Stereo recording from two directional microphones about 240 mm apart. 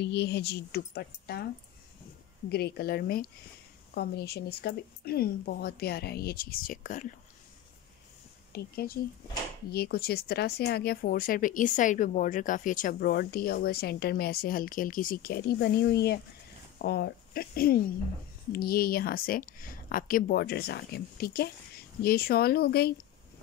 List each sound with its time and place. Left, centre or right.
0.0 s speech: left
2.5 s speech: left
8.5 s speech: left